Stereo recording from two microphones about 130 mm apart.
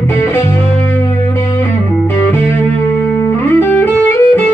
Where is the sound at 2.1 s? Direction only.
20° left (ahead or behind).